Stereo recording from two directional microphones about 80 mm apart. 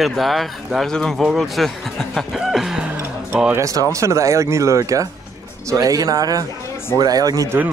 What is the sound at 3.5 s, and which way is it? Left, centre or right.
Speech, right.